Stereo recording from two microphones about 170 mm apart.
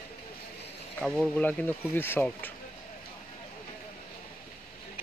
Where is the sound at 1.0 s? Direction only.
5° left (ahead or behind).